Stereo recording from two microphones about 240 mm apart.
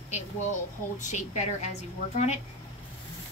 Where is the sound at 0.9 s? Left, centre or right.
Left.